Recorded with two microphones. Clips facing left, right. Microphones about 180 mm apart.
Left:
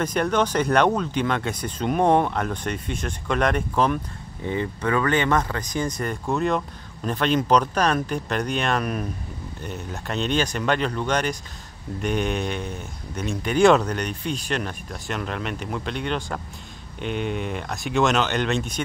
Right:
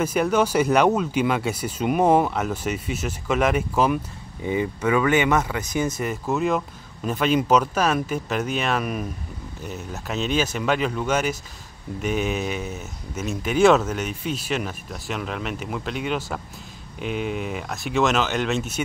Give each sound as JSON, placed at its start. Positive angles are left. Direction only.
{"t": 0.0, "sound": "a man's voice", "side_deg": -5}